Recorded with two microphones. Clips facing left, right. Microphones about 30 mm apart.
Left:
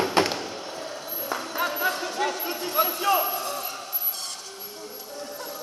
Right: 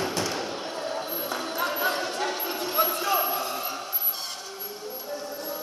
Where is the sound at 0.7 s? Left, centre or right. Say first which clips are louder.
Right 4 dB; right.